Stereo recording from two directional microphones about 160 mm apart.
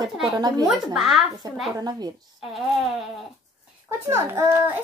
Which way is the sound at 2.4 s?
Centre (ahead or behind).